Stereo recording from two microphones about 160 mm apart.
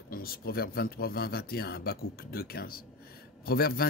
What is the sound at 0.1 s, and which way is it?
Speech, 65° left (ahead or behind).